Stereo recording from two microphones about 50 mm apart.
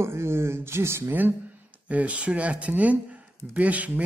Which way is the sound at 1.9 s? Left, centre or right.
Right.